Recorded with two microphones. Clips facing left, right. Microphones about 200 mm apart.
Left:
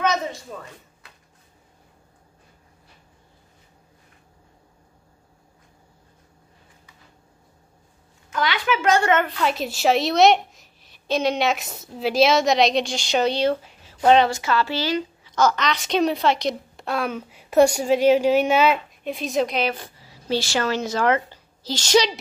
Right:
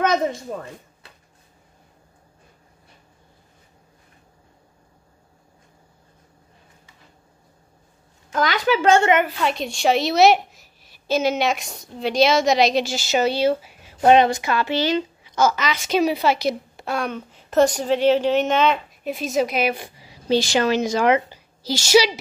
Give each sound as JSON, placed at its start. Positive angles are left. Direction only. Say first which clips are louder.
{"t": 0.0, "sound": "speech", "louder": "right 4 dB", "side_deg": -50}
{"t": 8.3, "sound": "a woman's voice", "louder": "right 3 dB", "side_deg": -40}
{"t": 9.4, "sound": "a woman's voice", "louder": "even", "side_deg": 0}
{"t": 15.3, "sound": "a woman's voice", "louder": "even", "side_deg": -5}
{"t": 19.0, "sound": "a woman's voice", "louder": "right 1 dB", "side_deg": 0}